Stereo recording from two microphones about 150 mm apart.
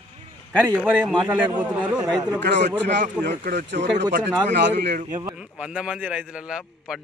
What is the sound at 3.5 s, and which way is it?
Speech, 75° right (ahead or behind).